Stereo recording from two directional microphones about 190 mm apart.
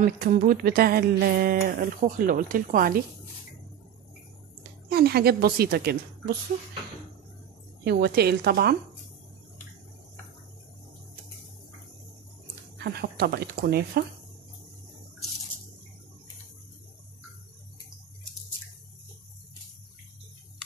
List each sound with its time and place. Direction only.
0.0 s speech: 45° right (ahead or behind)
4.8 s a woman's voice: 55° right (ahead or behind)
7.8 s a woman's voice: 55° right (ahead or behind)
12.7 s a woman's voice: 55° right (ahead or behind)